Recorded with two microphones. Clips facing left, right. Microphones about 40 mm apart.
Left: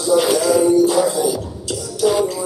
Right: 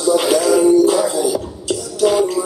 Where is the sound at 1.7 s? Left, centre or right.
Right.